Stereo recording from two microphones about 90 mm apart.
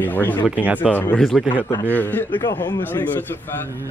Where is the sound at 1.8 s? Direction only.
20° left (ahead or behind).